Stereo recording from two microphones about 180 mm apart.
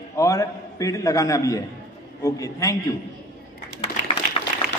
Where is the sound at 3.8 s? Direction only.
35° left (ahead or behind).